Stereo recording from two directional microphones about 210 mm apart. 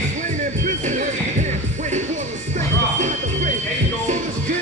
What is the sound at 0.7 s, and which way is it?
Music, 35° right (ahead or behind).